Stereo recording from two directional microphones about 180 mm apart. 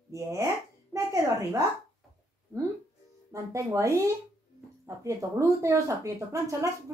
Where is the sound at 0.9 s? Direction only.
15° right (ahead or behind).